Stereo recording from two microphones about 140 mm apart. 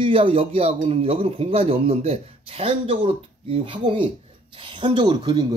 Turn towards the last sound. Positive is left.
turn(degrees=-35)  # may be behind; listen again after turning